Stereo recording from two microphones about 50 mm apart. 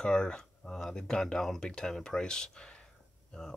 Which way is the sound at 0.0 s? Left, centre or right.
Centre.